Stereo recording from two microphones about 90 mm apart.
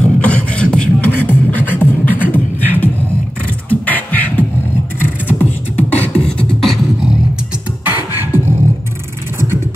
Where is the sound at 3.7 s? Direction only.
20° left (ahead or behind).